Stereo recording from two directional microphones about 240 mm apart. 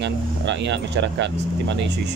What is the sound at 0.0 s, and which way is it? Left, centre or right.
Speech, right.